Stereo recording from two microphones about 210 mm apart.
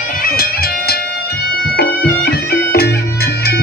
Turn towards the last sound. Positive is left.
turn(degrees=50)  # may be behind; listen again after turning